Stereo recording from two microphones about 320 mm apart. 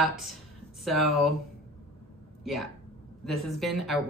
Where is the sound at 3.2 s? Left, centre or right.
Centre.